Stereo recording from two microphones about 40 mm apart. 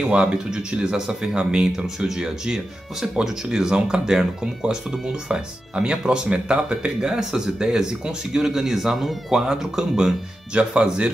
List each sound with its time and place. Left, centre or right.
0.0 s speech: right; by 9.4 s centre
9.5 s speech: centre
10.5 s speech: right